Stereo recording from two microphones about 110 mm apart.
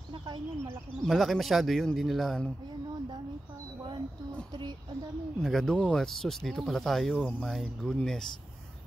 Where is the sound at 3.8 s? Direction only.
45° right (ahead or behind).